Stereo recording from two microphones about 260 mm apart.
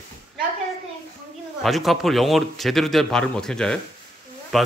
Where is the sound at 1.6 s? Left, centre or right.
Centre.